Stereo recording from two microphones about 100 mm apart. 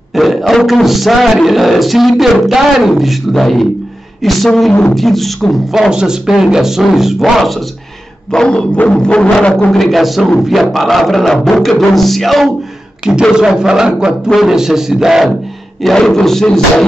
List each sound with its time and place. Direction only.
0.1 s a man's voice: centre (ahead or behind)